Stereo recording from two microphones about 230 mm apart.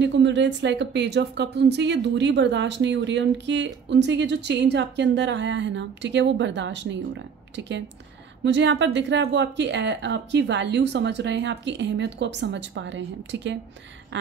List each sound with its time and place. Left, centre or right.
0.0 s a woman's voice: right